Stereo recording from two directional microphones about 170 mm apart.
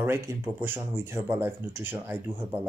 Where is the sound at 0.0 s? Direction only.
15° right (ahead or behind).